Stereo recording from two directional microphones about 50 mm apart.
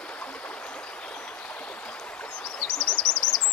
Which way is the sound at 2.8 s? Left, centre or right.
Centre.